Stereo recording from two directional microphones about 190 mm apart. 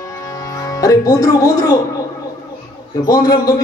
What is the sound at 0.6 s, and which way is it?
Speech, 15° left (ahead or behind).